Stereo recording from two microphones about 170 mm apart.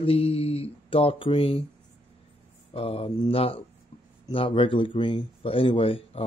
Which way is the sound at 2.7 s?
35° left (ahead or behind).